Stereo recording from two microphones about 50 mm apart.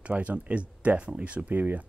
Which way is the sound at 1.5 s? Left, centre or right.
Right.